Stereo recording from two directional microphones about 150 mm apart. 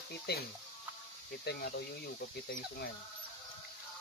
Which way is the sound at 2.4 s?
75° left (ahead or behind).